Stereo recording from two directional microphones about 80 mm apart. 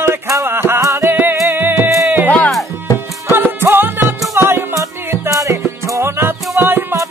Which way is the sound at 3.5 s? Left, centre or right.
Right.